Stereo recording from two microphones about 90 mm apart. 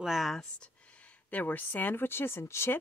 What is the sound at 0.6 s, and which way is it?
Speech, 15° left (ahead or behind).